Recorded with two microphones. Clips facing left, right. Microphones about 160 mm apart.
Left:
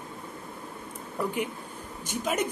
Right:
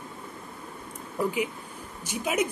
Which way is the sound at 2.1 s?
10° right (ahead or behind).